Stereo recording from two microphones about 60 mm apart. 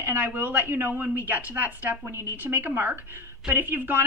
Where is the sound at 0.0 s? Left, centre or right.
Right.